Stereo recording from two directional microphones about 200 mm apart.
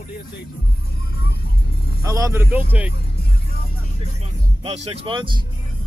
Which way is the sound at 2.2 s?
15° right (ahead or behind).